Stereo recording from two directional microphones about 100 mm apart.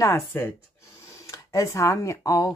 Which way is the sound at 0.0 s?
25° left (ahead or behind).